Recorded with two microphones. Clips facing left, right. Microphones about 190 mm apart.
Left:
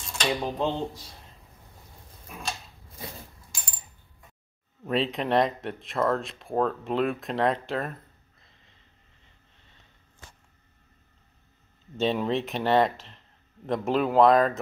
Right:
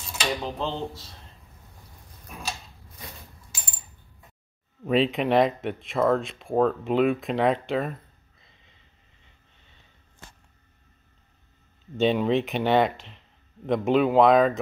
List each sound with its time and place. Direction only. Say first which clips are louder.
0.0 s dishes: left 1 dB; 5° right (ahead or behind)
0.4 s speech: left 2 dB; 15° left (ahead or behind)
3.5 s coin: right 1 dB; 5° right (ahead or behind)
4.8 s speech: right 4 dB; centre (ahead or behind)
12.0 s speech: right 4 dB; centre (ahead or behind)